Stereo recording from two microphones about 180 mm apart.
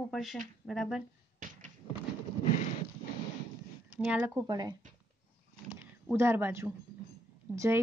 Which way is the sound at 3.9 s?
10° right (ahead or behind).